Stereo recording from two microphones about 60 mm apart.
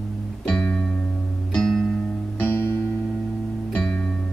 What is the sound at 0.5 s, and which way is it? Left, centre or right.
Music, centre.